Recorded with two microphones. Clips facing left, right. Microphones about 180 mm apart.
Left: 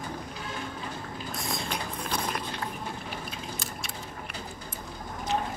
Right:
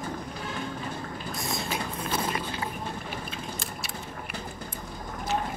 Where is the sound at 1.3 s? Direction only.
Centre (ahead or behind).